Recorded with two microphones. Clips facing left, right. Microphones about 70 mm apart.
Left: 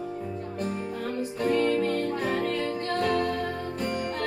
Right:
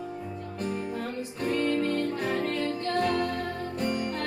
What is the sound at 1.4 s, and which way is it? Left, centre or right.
Music, left.